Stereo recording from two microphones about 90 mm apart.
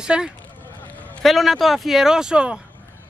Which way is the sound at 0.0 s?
10° right (ahead or behind).